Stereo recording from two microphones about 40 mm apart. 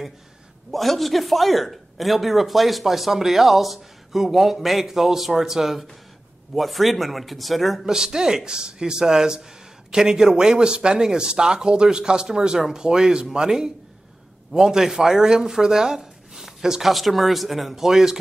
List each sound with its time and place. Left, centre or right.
0.7 s a man's voice: centre
7.8 s a man's voice: centre